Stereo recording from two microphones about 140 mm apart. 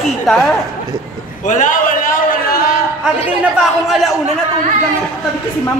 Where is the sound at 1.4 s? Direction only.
65° left (ahead or behind); by 2.4 s 80° left.